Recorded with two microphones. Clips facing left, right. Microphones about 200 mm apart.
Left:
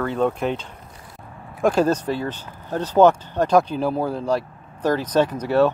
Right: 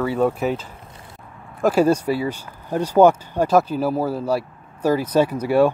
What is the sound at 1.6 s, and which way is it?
Speech, 10° right (ahead or behind).